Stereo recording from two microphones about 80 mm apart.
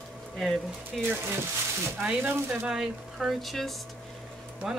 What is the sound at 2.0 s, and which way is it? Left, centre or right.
Speech, right.